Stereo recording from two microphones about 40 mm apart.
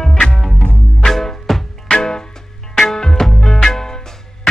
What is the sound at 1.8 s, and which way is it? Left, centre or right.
Music, centre.